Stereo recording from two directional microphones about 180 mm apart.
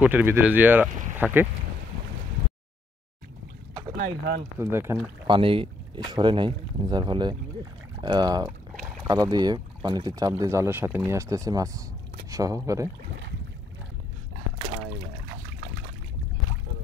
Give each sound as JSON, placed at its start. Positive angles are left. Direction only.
{"t": 0.0, "sound": "speech", "side_deg": -10}
{"t": 4.6, "sound": "speech", "side_deg": -15}
{"t": 5.2, "sound": "speech", "side_deg": -30}
{"t": 14.7, "sound": "trickle", "side_deg": -35}